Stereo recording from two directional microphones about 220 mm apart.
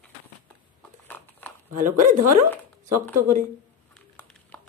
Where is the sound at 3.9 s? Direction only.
5° left (ahead or behind).